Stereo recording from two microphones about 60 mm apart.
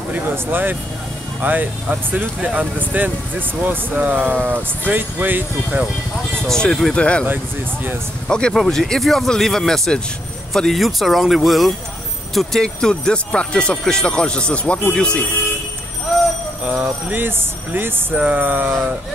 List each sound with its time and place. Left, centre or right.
0.1 s a sound: right
1.4 s speech: right
2.4 s speech: centre
6.4 s speech: centre
8.3 s speech: centre
16.6 s speech: right
17.7 s a sound: right